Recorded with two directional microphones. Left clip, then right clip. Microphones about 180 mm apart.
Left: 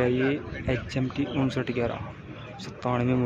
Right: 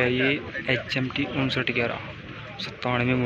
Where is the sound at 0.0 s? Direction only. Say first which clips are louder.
Right 2 dB; 15° left (ahead or behind).